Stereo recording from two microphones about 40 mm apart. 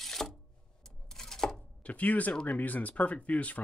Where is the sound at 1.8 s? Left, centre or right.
Left.